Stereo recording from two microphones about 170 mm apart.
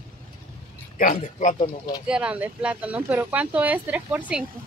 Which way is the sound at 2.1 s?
5° right (ahead or behind).